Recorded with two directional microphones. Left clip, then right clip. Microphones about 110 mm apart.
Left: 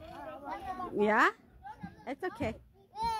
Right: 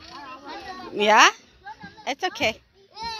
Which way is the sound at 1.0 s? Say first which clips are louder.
Right 11 dB; 5° right (ahead or behind).